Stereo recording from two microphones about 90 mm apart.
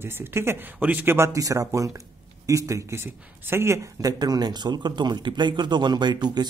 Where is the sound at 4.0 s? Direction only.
45° right (ahead or behind).